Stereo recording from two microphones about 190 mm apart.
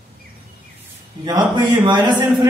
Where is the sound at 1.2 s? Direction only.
20° right (ahead or behind).